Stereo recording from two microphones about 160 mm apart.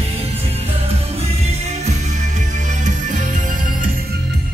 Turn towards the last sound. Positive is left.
turn(degrees=-55)  # may be behind; listen again after turning